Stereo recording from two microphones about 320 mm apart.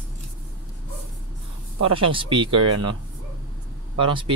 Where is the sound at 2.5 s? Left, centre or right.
Right.